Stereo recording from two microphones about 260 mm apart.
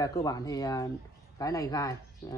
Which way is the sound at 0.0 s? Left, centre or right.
Centre.